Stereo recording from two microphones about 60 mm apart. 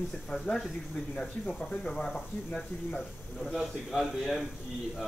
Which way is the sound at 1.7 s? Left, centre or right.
Centre.